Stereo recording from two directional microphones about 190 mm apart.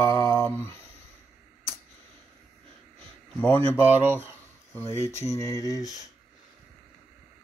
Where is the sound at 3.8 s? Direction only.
10° right (ahead or behind).